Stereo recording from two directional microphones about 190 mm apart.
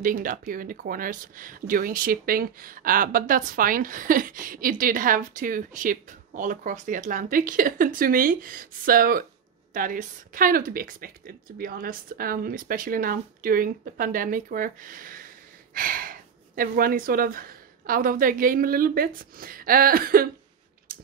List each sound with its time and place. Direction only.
0.0 s speech: 45° right (ahead or behind)
20.9 s mechanisms: 50° right (ahead or behind)